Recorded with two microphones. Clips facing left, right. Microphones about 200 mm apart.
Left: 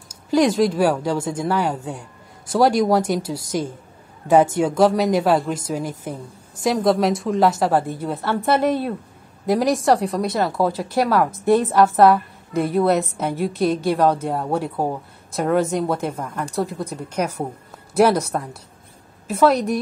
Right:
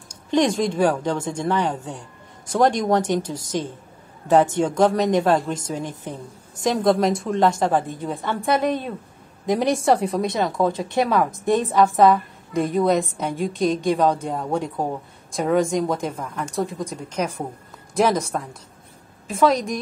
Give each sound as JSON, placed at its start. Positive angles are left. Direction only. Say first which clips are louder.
{"t": 0.1, "sound": "a woman's voice", "louder": "left 2 dB", "side_deg": 5}